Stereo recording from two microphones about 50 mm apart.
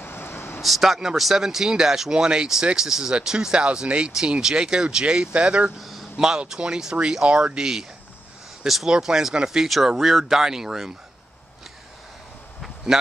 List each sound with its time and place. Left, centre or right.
0.0 s vehicle: left
0.6 s speech: centre; by 5.7 s right
5.8 s a sound: centre
6.1 s speech: centre
8.6 s speech: centre
12.9 s speech: centre